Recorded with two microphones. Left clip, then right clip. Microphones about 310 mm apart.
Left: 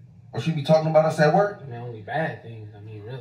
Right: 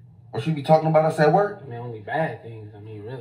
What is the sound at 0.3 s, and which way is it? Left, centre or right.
Speech, right.